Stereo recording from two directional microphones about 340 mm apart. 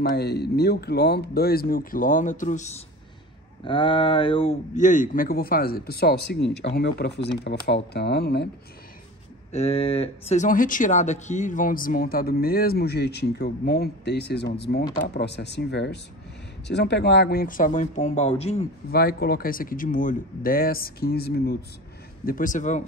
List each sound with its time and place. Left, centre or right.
0.1 s speech: left
9.5 s speech: centre